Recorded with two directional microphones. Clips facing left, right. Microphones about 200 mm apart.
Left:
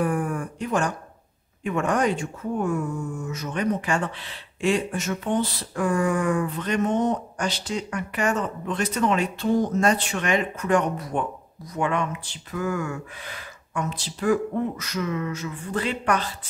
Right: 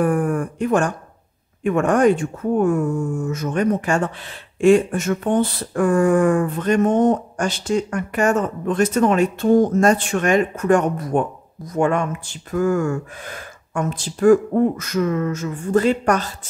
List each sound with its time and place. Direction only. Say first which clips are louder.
0.0 s speech: right 6 dB; 50° right (ahead or behind)